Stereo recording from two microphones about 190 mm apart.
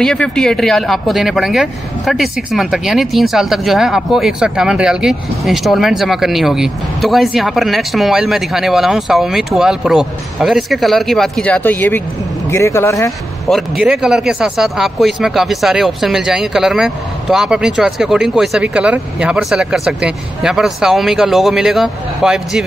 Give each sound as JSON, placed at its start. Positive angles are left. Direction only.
{"t": 0.0, "sound": "speech", "side_deg": 5}
{"t": 13.5, "sound": "speech", "side_deg": 0}